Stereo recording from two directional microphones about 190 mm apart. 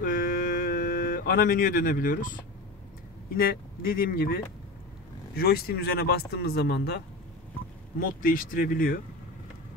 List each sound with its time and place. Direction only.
0.0 s a sound: 50° left (ahead or behind)
3.3 s speech: 50° left (ahead or behind)
8.0 s speech: 45° left (ahead or behind)